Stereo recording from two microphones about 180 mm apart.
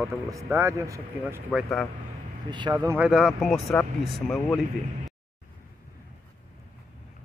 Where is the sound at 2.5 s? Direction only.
25° right (ahead or behind).